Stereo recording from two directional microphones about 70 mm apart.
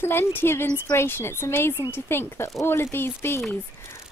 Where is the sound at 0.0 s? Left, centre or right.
Left.